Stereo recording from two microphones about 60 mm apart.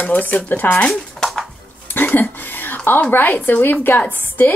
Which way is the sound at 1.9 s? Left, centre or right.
Left.